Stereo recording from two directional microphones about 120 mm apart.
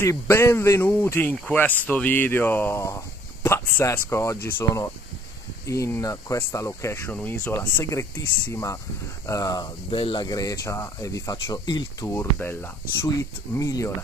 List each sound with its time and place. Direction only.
0.0 s speech: 20° left (ahead or behind)
9.8 s speech: 45° left (ahead or behind)
10.2 s speech: 30° left (ahead or behind)
12.4 s speech: 20° left (ahead or behind)